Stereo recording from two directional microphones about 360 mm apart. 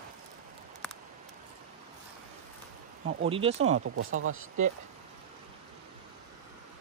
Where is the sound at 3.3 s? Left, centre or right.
Centre.